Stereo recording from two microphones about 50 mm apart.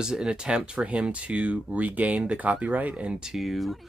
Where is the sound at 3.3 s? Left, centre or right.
Centre.